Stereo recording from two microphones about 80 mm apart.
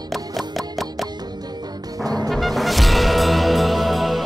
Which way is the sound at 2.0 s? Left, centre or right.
Right.